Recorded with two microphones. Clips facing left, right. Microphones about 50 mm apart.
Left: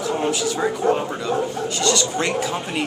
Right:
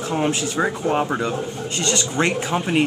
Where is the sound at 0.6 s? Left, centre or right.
Centre.